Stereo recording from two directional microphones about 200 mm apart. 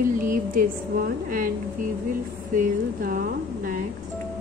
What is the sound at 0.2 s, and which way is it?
A woman's voice, 45° right (ahead or behind).